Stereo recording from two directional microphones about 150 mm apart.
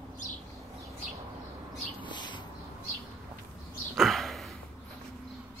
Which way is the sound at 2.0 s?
30° left (ahead or behind).